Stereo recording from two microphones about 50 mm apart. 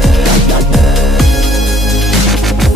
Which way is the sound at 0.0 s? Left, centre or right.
Centre.